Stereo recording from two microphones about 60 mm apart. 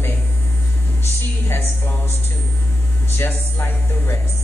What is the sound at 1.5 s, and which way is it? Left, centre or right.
A woman's voice, left.